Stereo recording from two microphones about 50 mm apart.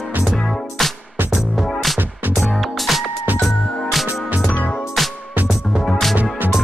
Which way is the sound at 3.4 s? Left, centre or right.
Centre.